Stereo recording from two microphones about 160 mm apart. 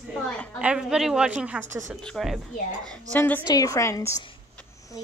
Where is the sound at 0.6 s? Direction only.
5° right (ahead or behind); by 3.4 s 10° left (ahead or behind).